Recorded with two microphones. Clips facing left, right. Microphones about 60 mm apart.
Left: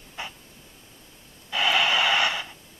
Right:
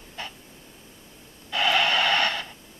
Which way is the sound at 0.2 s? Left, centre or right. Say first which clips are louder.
Left 1 dB; centre.